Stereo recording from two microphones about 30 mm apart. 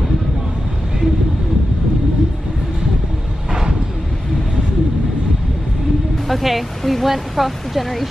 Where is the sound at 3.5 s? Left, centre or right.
Right.